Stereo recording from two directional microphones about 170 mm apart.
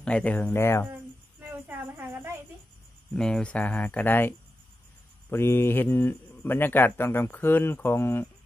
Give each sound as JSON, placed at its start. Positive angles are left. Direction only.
{"t": 0.0, "sound": "speech", "side_deg": 5}
{"t": 1.4, "sound": "child singing", "side_deg": -10}
{"t": 3.2, "sound": "speech", "side_deg": 5}